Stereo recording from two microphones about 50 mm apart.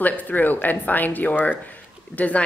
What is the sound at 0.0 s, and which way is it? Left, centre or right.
A woman's voice, left.